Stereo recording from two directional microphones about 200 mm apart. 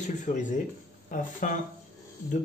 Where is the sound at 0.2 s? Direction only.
40° left (ahead or behind).